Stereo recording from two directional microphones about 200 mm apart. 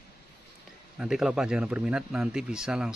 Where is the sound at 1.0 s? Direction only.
5° right (ahead or behind).